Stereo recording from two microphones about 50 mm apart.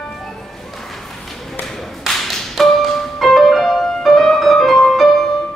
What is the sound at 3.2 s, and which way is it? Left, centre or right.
Music, centre.